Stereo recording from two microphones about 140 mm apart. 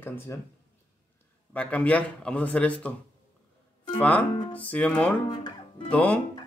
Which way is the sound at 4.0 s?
10° left (ahead or behind).